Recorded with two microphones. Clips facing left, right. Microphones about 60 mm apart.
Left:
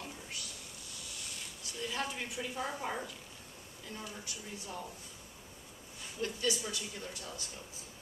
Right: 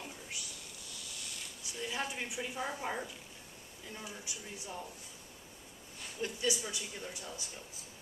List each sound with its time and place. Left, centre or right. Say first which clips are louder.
1.6 s a woman's voice: even; centre
6.2 s speech: left 1 dB; centre